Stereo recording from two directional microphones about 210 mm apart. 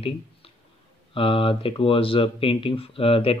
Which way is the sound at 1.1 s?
25° left (ahead or behind).